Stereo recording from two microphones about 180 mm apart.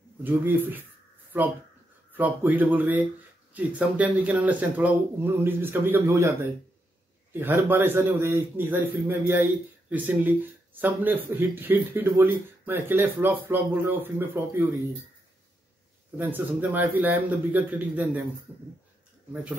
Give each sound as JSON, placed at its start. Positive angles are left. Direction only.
{"t": 0.2, "sound": "a man's voice", "side_deg": -10}
{"t": 16.2, "sound": "a man's voice", "side_deg": -10}